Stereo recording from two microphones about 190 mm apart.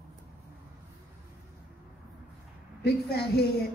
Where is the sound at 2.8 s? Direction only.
55° left (ahead or behind).